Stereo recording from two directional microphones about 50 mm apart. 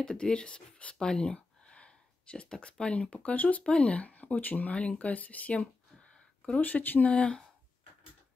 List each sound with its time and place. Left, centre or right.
0.0 s speech: centre
6.6 s speech: left
7.1 s speech: left